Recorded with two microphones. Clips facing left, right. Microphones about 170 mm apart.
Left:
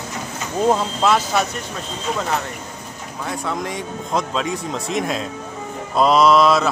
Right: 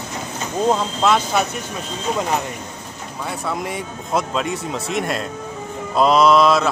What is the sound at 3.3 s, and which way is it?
A man's voice, 5° right (ahead or behind).